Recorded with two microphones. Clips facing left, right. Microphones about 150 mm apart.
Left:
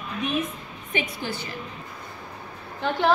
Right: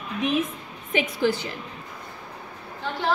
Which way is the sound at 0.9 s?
90° right.